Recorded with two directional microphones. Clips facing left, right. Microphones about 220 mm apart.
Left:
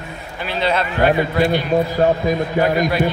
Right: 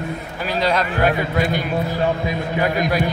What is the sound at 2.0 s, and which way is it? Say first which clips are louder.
Speech: left 5 dB; 45° left (ahead or behind).